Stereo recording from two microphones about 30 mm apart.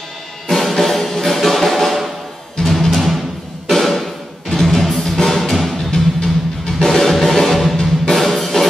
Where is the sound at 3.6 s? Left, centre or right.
Centre.